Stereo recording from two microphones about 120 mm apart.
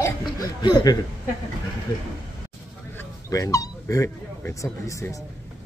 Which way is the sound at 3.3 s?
30° left (ahead or behind).